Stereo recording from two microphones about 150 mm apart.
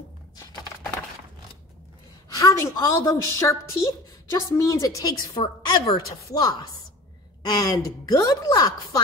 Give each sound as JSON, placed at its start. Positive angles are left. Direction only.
{"t": 2.3, "sound": "a woman's voice", "side_deg": 20}